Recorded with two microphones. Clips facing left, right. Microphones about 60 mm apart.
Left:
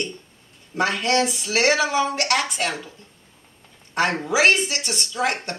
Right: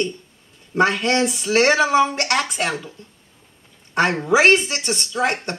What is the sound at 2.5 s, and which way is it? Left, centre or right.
Speech, centre.